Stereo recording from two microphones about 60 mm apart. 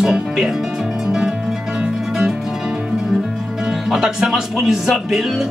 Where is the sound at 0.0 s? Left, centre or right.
Centre.